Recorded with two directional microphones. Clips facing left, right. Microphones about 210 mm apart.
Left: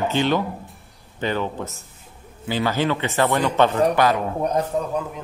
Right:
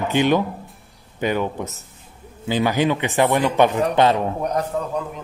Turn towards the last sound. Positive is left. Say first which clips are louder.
# left 1 dB
turn(degrees=15)  # may be behind; listen again after turning